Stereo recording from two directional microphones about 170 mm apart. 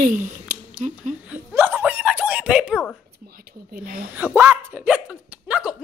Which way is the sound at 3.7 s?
55° right (ahead or behind).